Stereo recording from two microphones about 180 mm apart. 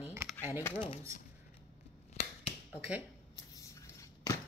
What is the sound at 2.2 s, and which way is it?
Finger snapping, 35° left (ahead or behind).